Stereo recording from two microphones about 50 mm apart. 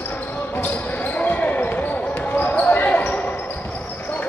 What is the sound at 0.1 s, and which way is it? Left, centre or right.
Basketball bounce, left.